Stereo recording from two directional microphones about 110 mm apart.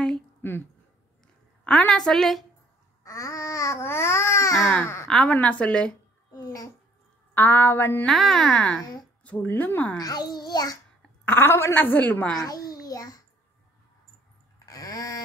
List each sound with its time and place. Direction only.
0.4 s a woman's voice: 20° left (ahead or behind); by 2.4 s centre (ahead or behind)
3.0 s babbling: 30° left (ahead or behind)
4.7 s a sound: 20° left (ahead or behind)
5.0 s a woman's voice: 5° left (ahead or behind)
6.3 s babbling: 35° left (ahead or behind)
7.3 s a woman's voice: 20° left (ahead or behind)
8.1 s a woman's voice: centre (ahead or behind)
9.9 s a child's voice: 35° left (ahead or behind)
11.2 s a woman's voice: 20° left (ahead or behind)
12.4 s babbling: 35° left (ahead or behind)
14.7 s a sound: 30° left (ahead or behind)